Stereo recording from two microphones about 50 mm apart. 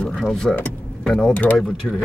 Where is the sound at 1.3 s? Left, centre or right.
Left.